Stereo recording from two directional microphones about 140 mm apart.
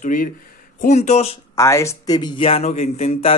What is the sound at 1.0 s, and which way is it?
Speech, 50° left (ahead or behind).